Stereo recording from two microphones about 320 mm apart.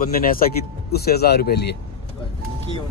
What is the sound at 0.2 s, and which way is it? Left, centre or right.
Speech, left.